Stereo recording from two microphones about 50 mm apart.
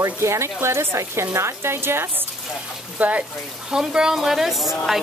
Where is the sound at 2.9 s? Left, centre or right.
Right.